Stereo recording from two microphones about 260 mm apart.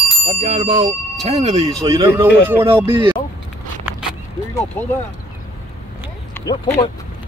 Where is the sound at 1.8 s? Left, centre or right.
Centre.